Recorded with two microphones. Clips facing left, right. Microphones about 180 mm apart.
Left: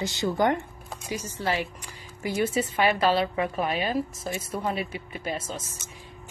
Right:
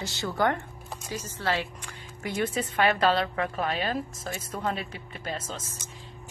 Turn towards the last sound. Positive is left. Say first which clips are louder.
# left 3 dB
turn(degrees=10)  # may be behind; listen again after turning